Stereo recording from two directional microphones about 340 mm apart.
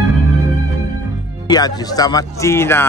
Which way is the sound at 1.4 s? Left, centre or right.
Centre.